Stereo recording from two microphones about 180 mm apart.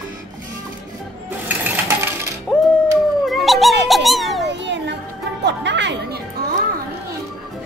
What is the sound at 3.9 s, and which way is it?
Music, centre (ahead or behind).